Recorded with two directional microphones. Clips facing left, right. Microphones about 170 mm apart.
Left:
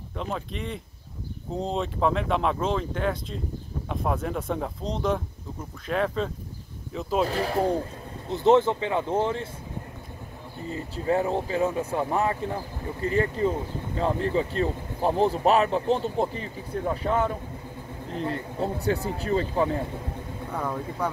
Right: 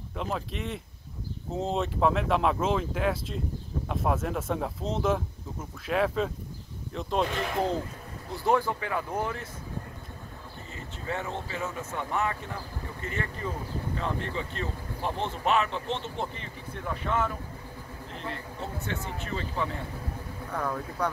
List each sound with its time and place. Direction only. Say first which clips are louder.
0.1 s speech: left 1 dB; centre (ahead or behind)
7.2 s speech: left 4 dB; 35° left (ahead or behind)
8.3 s speech: left 7 dB; 20° left (ahead or behind)
10.7 s speech: left 10 dB; 35° left (ahead or behind)
20.5 s speech: left 1 dB; 10° left (ahead or behind)